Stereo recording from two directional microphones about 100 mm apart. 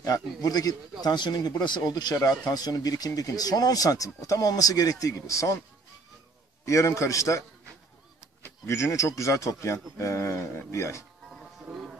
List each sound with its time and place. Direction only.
0.0 s speech: 40° left (ahead or behind)
6.6 s speech: 30° left (ahead or behind)
8.6 s speech: 30° left (ahead or behind)
11.7 s a sound: centre (ahead or behind)